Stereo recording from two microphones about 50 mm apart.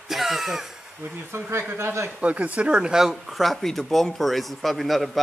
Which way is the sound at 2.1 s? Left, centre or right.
Right.